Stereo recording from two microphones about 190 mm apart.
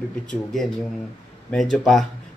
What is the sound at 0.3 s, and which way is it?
Speech, centre (ahead or behind).